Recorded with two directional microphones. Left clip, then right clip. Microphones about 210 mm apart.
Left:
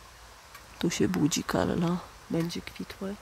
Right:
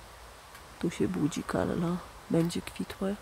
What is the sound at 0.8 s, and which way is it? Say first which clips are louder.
Speech: left 3 dB; 10° left (ahead or behind).